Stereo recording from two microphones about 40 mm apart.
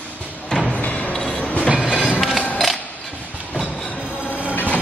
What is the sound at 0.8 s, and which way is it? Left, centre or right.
Music, left.